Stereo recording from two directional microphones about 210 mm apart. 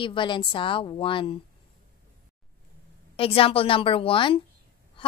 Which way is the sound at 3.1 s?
25° left (ahead or behind).